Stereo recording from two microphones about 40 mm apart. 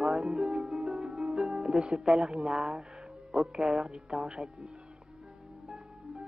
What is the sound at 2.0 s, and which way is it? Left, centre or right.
Speech, centre.